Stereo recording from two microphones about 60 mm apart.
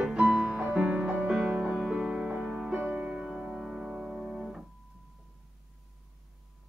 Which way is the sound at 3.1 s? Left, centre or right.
Centre.